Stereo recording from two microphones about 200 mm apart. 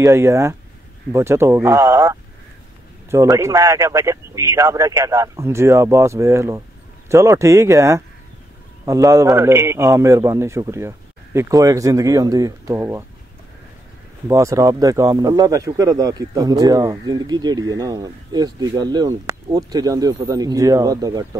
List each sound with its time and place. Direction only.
0.0 s speech: 15° right (ahead or behind)
14.2 s speech: 15° right (ahead or behind)